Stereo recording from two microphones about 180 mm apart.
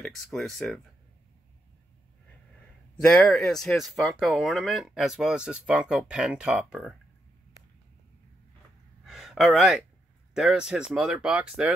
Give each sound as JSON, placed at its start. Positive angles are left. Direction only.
{"t": 0.0, "sound": "speech", "side_deg": 0}
{"t": 3.0, "sound": "speech", "side_deg": 5}
{"t": 9.0, "sound": "a sound", "side_deg": 0}
{"t": 10.3, "sound": "speech", "side_deg": -5}